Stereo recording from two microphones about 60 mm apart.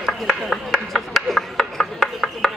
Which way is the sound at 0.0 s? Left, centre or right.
Centre.